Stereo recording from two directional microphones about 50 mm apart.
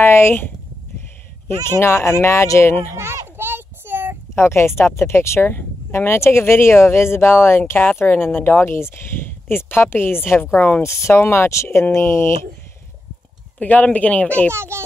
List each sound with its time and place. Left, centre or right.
0.0 s speech: left
1.6 s speech: left
2.9 s children playing: right
4.4 s speech: left
5.5 s speech: left
11.1 s speech: left
13.6 s speech: left
14.5 s speech: right